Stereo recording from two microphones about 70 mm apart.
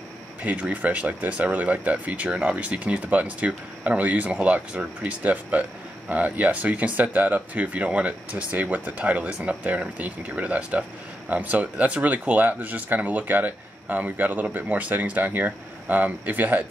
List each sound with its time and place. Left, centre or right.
0.4 s speech: centre